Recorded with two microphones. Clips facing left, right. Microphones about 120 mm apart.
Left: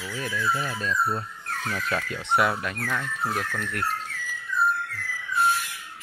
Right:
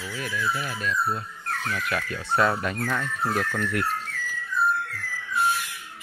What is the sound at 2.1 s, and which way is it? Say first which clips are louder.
Speech: even; 20° left (ahead or behind).